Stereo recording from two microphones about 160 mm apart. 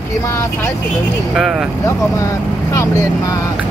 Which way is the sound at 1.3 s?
5° right (ahead or behind).